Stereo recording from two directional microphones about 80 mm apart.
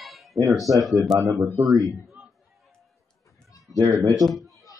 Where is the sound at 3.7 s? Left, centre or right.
Right.